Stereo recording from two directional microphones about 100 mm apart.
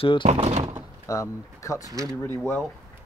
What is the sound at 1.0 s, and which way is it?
Speech, 35° left (ahead or behind).